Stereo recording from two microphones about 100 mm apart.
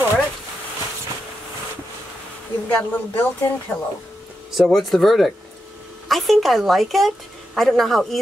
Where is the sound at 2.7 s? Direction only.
20° left (ahead or behind).